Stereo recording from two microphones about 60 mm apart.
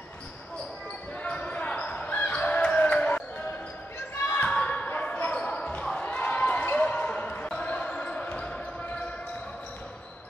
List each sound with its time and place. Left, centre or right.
1.2 s basketball bounce: centre
4.5 s basketball bounce: centre
5.7 s a sound: centre
6.7 s basketball bounce: left